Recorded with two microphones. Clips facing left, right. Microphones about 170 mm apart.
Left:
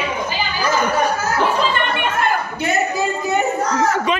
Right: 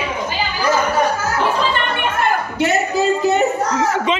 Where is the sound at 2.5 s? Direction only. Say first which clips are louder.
Right 3 dB; 75° right (ahead or behind).